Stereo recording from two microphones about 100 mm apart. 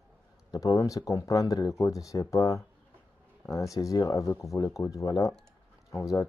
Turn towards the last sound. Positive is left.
turn(degrees=35)  # may be behind; listen again after turning